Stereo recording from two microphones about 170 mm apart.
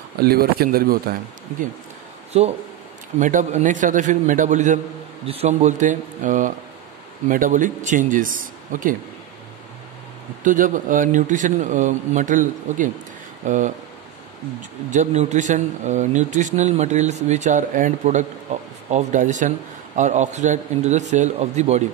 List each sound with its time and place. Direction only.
0.2 s speech: 65° right (ahead or behind)
2.3 s a man's voice: 40° right (ahead or behind)
5.2 s a man's voice: 35° right (ahead or behind); by 8.9 s 50° right (ahead or behind)
10.4 s a man's voice: 50° right (ahead or behind)
14.9 s a man's voice: 45° right (ahead or behind)